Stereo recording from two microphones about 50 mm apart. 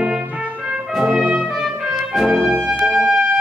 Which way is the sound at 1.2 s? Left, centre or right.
Right.